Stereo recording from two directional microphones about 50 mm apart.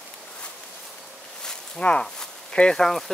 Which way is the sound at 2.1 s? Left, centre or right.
Centre.